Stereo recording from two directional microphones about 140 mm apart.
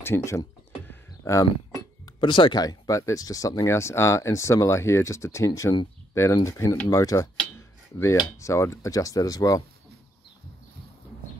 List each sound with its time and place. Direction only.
0.0 s a sound: 20° left (ahead or behind)
2.1 s speech: 35° left (ahead or behind)
8.4 s speech: 20° left (ahead or behind)